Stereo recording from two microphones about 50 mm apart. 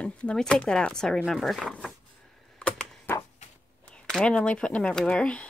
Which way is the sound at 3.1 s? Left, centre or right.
Left.